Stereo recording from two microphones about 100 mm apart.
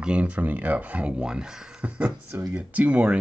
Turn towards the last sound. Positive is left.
turn(degrees=-15)  # may be behind; listen again after turning